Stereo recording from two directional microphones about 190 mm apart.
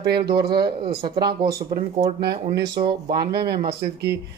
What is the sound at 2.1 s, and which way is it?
Speech, 60° right (ahead or behind).